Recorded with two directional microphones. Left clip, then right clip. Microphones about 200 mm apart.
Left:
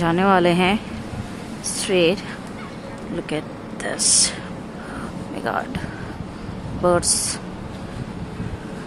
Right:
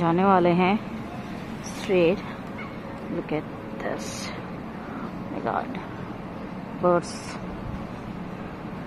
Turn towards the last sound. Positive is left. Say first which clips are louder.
# left 3 dB
turn(degrees=15)  # may be behind; listen again after turning